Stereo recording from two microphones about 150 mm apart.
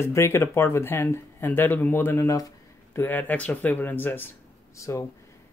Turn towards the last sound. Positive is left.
turn(degrees=20)  # may be behind; listen again after turning